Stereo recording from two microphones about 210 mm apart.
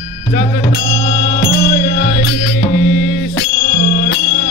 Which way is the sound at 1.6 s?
45° left (ahead or behind).